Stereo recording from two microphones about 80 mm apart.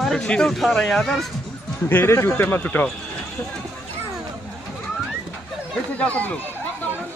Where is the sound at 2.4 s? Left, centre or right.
Left.